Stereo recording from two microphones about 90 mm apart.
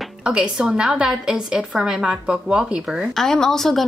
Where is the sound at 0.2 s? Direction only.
10° right (ahead or behind).